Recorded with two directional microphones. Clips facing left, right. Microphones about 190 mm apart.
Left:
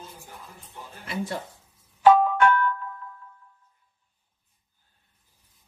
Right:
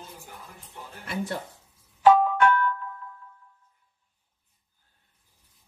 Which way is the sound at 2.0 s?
60° left (ahead or behind).